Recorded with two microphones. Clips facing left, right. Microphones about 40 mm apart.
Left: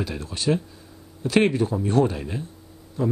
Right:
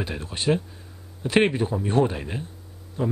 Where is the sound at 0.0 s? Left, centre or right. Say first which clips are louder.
Even; right.